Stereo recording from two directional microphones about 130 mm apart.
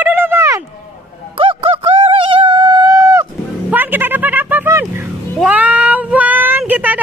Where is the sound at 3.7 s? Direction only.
15° right (ahead or behind).